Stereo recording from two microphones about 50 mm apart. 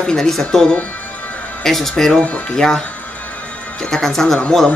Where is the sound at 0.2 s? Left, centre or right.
Centre.